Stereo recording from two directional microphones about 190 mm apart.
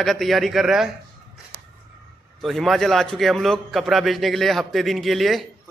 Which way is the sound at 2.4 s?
Centre (ahead or behind).